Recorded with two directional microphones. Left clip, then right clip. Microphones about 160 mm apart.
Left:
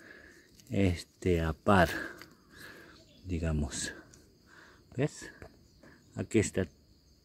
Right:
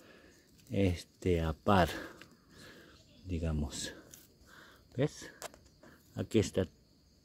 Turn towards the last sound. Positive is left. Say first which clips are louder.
# left 1 dB
turn(degrees=0)  # may be behind; listen again after turning